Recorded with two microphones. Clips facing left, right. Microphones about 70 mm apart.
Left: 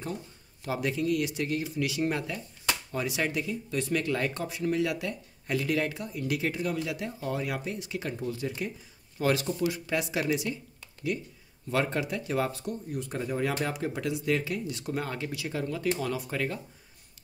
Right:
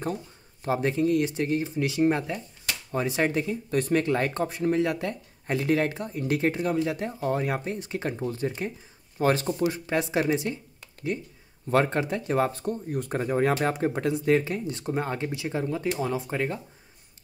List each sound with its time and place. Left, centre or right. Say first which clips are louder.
0.7 s speech: right 5 dB; right
11.7 s speech: right 5 dB; right